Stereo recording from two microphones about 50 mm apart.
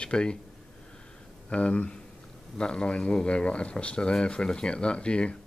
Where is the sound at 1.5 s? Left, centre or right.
Left.